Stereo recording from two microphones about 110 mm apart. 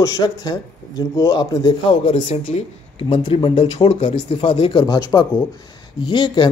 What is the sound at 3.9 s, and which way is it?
Speech, 80° left.